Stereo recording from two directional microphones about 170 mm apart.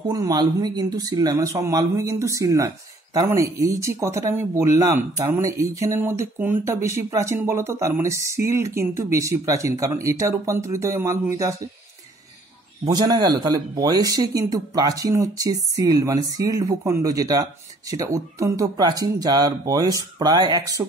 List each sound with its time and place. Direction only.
0.0 s speech: 20° right (ahead or behind)
12.8 s speech: 20° right (ahead or behind)